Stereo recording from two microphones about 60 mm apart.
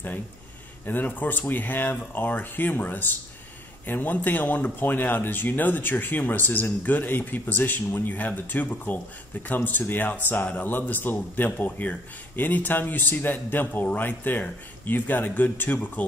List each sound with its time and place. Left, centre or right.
0.8 s speech: left